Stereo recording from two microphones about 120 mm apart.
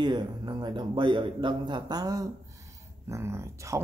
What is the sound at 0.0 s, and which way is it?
A man's voice, 35° right (ahead or behind).